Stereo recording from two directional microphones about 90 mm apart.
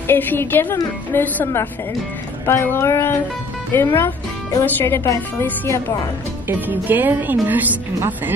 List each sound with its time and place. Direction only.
0.1 s a woman's voice: 20° left (ahead or behind)
6.7 s speech: 20° right (ahead or behind)